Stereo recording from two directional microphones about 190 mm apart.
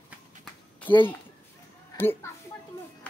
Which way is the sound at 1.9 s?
10° left (ahead or behind).